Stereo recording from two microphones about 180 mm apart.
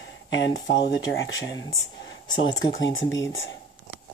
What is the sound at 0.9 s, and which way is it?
Speech, 85° left.